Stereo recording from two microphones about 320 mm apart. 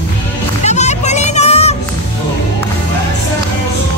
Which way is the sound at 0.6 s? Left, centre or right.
Left.